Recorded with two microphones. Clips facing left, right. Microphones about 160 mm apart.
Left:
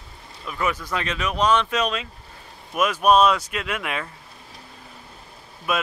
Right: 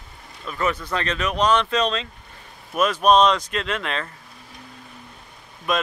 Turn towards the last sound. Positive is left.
turn(degrees=5)  # may be behind; listen again after turning